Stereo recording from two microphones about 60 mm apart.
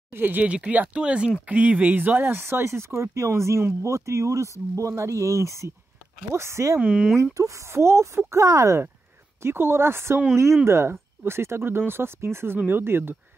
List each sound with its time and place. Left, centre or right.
0.1 s speech: right
6.8 s speech: right
7.3 s speech: right
9.4 s speech: right